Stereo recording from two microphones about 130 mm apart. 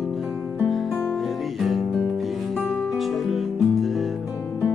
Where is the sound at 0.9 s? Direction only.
15° left (ahead or behind).